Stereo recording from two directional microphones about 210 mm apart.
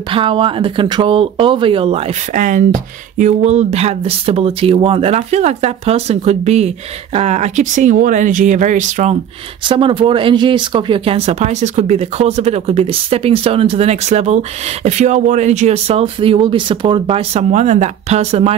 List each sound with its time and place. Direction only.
0.1 s speech: 25° right (ahead or behind)
9.7 s speech: 25° right (ahead or behind)